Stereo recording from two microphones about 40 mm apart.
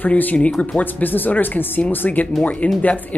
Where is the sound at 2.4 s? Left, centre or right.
Left.